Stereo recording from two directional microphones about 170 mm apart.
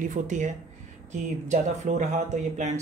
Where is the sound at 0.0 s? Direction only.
50° right (ahead or behind).